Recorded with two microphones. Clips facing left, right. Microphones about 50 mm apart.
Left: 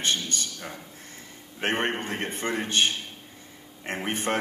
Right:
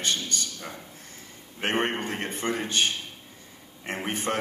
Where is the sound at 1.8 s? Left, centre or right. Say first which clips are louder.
Even; left.